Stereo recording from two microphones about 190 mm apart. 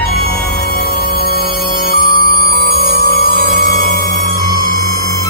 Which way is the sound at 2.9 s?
50° left (ahead or behind).